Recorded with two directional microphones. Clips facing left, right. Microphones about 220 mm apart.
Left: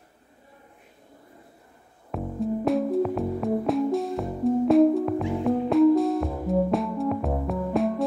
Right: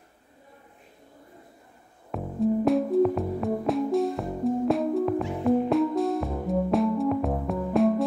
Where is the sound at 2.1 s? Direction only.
Centre (ahead or behind).